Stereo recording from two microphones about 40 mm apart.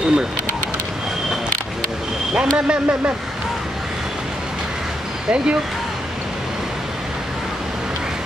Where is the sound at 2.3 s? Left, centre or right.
Right.